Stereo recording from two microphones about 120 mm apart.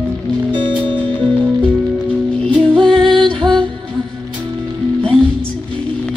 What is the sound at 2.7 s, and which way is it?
Music, 40° right (ahead or behind).